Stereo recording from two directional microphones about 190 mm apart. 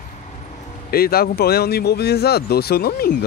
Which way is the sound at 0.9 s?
55° left (ahead or behind).